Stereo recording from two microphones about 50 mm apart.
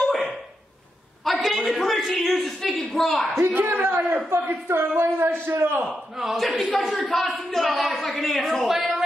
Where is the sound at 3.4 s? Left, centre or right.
Right.